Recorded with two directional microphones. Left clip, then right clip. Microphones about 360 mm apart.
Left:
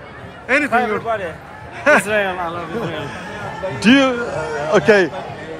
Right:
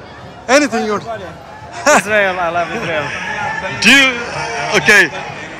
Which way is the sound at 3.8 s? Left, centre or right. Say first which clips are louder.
Right 5 dB; centre.